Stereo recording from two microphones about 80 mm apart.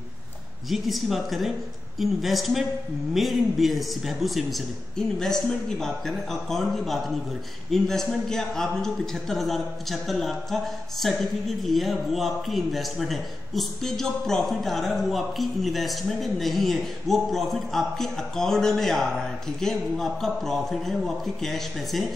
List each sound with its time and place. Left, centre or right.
0.7 s a man's voice: centre